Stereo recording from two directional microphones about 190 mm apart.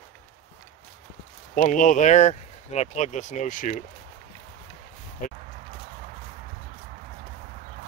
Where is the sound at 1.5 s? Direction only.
45° left (ahead or behind).